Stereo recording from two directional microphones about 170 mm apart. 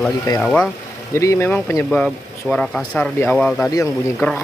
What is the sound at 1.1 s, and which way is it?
Speech, 15° left (ahead or behind).